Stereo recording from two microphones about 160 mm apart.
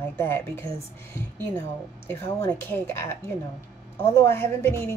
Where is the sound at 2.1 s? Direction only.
15° left (ahead or behind).